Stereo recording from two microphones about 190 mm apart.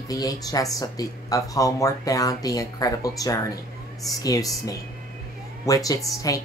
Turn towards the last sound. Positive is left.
turn(degrees=20)  # may be behind; listen again after turning